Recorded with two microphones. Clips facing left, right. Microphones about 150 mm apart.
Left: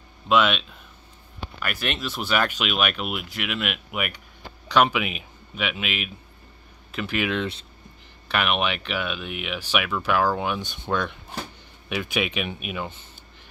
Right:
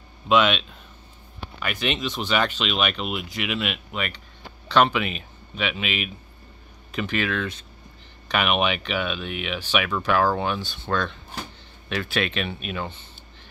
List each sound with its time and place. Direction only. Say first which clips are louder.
0.3 s speech: right 1 dB; 5° left (ahead or behind)
7.2 s speech: left 1 dB; 25° left (ahead or behind)
8.3 s speech: right 2 dB; centre (ahead or behind)